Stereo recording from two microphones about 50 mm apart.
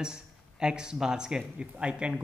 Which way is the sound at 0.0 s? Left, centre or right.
Centre.